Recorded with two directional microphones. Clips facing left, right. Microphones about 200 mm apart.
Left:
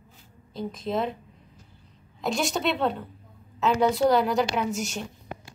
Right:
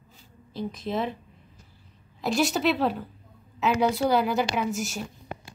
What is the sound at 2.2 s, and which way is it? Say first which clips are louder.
A woman's voice: right 2 dB; centre (ahead or behind).